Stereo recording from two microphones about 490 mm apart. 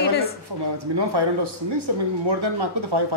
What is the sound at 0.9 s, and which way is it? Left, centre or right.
A man's voice, right.